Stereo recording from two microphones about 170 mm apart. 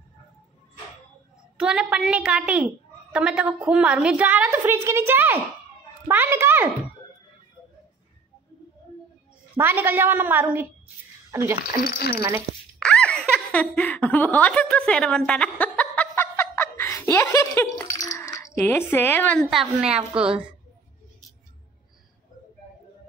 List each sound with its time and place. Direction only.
1.6 s a woman's voice: 5° right (ahead or behind)
9.6 s a woman's voice: 15° right (ahead or behind)
11.8 s speech: 70° left (ahead or behind)
12.2 s a woman's voice: 15° right (ahead or behind)
12.7 s laughter: 5° left (ahead or behind)
18.0 s speech: 20° left (ahead or behind); by 20.2 s 5° right (ahead or behind)